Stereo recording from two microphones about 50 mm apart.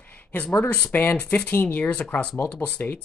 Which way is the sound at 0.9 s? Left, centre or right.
Left.